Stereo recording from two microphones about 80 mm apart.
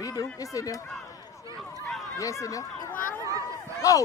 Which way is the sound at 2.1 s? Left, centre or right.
Left.